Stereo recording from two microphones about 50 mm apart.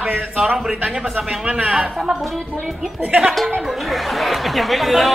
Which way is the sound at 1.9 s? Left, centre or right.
Centre.